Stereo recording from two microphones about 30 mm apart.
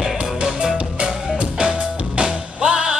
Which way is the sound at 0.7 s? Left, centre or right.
Right.